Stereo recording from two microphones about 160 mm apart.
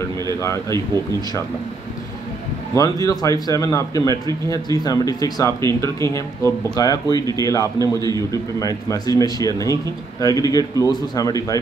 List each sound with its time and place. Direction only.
0.7 s speech: 20° left (ahead or behind)
2.7 s speech: 20° left (ahead or behind)